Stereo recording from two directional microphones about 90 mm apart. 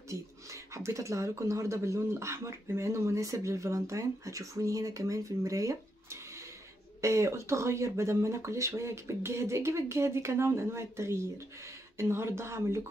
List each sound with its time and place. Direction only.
0.1 s speech: 35° right (ahead or behind)